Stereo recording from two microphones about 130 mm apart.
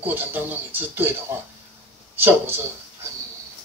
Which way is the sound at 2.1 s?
15° right (ahead or behind).